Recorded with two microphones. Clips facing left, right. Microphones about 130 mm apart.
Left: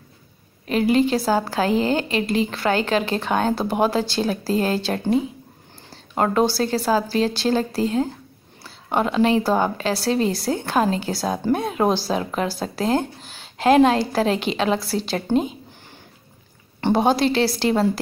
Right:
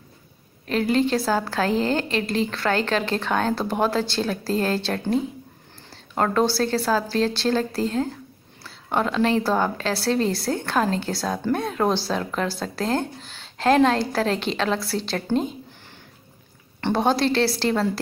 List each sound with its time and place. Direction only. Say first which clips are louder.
0.7 s a woman's voice: left 3 dB; 10° left (ahead or behind)
11.2 s a woman's voice: left 3 dB; 15° left (ahead or behind)
16.8 s a woman's voice: left 3 dB; 15° left (ahead or behind)